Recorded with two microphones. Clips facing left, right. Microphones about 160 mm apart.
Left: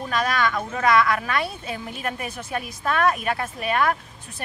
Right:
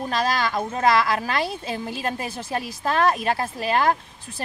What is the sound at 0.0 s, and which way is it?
Speech, 35° right (ahead or behind).